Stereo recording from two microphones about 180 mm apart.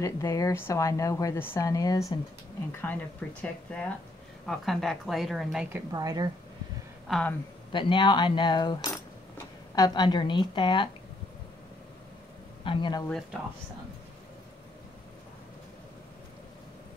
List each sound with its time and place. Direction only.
0.0 s a woman's voice: 15° left (ahead or behind); by 6.2 s 20° right (ahead or behind)
7.1 s speech: 5° left (ahead or behind)
7.7 s speech: 25° left (ahead or behind)
12.6 s speech: 25° left (ahead or behind)